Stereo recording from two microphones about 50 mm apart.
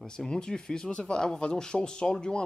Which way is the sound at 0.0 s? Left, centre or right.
Centre.